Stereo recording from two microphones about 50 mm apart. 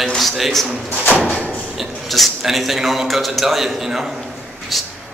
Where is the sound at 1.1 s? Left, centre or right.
Left.